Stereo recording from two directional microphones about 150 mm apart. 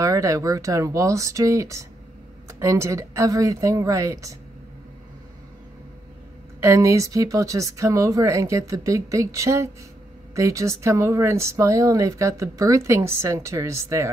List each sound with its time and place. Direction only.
0.0 s speech: 20° right (ahead or behind)
6.6 s speech: 20° right (ahead or behind)